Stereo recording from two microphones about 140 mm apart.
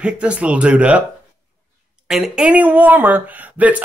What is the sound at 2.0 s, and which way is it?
Speech, 5° right (ahead or behind).